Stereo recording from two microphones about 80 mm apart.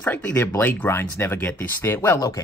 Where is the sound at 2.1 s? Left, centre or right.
Left.